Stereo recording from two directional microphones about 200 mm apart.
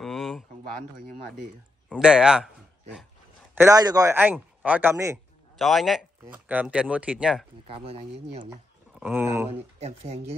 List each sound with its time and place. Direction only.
0.0 s a sound: centre (ahead or behind)
2.0 s speech: 5° right (ahead or behind)
3.5 s speech: 15° right (ahead or behind)
5.6 s speech: centre (ahead or behind)
7.6 s speech: 30° right (ahead or behind)
9.0 s speech: 10° right (ahead or behind)
9.5 s speech: 35° right (ahead or behind)